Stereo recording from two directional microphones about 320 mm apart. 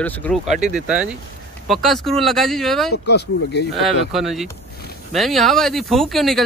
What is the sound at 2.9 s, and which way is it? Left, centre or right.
Speech, left.